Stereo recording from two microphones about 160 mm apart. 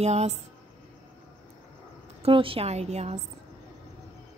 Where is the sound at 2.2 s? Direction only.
35° right (ahead or behind).